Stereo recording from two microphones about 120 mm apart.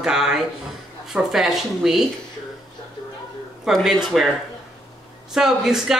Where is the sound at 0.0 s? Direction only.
5° right (ahead or behind).